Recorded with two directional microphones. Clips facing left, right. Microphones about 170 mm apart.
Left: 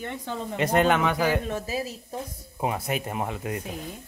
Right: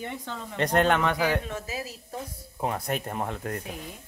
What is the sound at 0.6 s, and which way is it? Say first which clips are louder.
Speech: left 1 dB; 5° left (ahead or behind).